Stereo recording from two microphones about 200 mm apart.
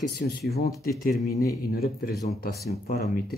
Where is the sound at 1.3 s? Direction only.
15° left (ahead or behind).